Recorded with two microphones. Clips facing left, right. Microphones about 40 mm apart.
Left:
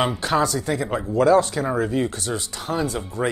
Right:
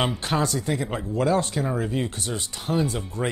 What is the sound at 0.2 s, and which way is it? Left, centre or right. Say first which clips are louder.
Speech: left 4 dB; right.